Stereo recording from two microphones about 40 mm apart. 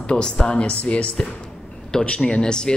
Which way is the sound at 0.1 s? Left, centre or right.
Left.